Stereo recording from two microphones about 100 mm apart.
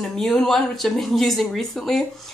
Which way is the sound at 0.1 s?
5° left (ahead or behind).